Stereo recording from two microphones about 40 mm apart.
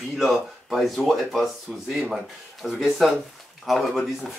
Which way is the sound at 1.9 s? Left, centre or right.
Centre.